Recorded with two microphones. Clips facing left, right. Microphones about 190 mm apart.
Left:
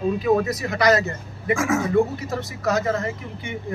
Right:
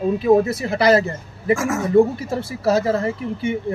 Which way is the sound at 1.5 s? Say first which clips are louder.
Right 2 dB; centre (ahead or behind).